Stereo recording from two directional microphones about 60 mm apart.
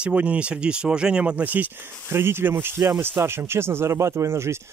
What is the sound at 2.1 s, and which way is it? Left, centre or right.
Speech, right.